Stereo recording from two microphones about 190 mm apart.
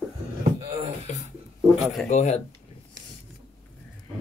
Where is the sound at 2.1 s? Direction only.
40° left (ahead or behind).